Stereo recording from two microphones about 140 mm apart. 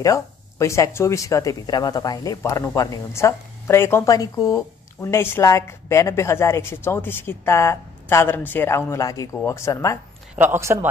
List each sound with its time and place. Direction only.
0.0 s speech: 20° left (ahead or behind)
10.3 s a man's voice: 15° right (ahead or behind)